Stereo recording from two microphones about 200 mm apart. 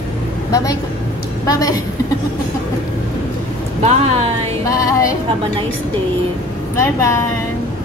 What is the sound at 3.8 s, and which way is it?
Speech, 30° right (ahead or behind).